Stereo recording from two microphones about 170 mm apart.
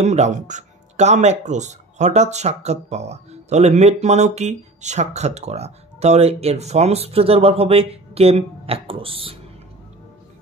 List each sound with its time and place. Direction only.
0.0 s speech: 40° right (ahead or behind)